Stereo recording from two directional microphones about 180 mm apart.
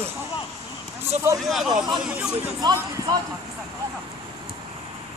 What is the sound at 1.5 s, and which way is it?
Speech, centre (ahead or behind).